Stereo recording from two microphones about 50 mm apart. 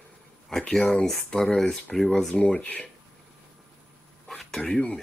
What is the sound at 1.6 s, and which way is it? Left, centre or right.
Speech, centre.